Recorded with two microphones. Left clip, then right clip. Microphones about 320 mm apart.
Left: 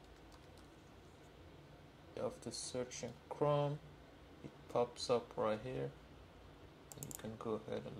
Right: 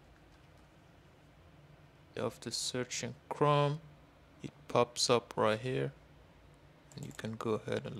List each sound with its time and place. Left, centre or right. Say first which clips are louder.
2.1 s speech: right 6 dB; right
4.7 s speech: right 7 dB; right
7.2 s speech: right 7 dB; right